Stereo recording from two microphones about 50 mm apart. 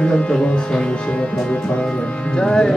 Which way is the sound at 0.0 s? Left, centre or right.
Left.